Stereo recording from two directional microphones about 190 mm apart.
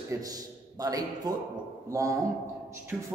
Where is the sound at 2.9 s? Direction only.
5° right (ahead or behind).